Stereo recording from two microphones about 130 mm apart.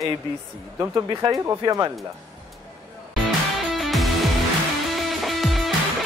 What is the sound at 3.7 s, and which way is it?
Music, centre (ahead or behind).